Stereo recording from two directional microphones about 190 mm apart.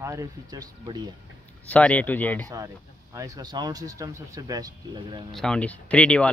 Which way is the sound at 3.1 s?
15° right (ahead or behind).